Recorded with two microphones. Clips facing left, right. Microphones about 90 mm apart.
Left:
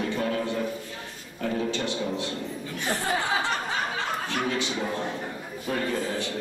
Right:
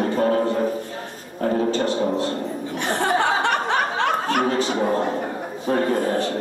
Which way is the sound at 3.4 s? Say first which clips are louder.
Right 8 dB; 65° right (ahead or behind).